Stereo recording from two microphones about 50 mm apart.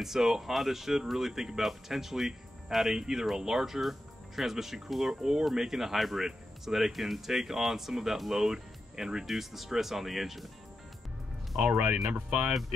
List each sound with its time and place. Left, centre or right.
0.0 s speech: centre
11.5 s speech: right